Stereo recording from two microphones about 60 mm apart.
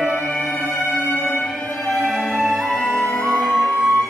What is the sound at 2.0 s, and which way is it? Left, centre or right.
Music, centre.